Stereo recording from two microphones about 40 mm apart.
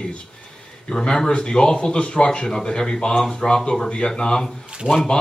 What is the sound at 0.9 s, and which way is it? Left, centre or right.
Speech, centre.